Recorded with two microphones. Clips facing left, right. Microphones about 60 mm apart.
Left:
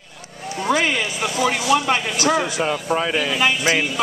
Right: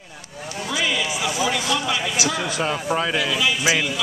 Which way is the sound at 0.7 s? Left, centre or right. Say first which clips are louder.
Left 4 dB; left.